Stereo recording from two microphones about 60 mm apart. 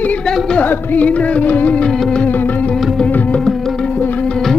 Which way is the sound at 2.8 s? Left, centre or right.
Centre.